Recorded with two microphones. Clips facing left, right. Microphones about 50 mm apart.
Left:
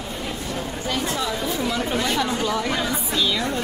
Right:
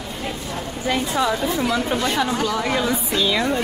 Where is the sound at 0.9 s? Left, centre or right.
Right.